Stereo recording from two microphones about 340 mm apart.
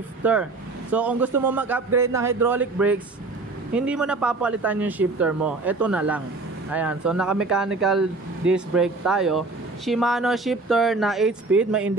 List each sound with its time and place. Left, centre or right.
0.2 s speech: centre